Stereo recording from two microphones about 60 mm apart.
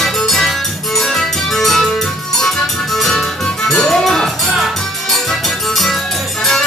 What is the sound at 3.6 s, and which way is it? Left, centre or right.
Music, centre.